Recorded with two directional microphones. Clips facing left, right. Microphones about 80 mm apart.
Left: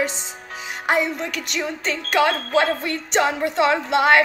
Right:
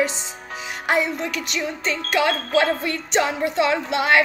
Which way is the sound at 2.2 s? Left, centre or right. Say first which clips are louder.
Left 1 dB; left.